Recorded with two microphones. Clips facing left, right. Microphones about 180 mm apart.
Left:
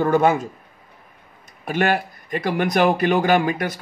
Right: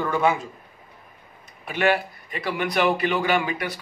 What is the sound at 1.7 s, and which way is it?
A man's voice, 45° left (ahead or behind).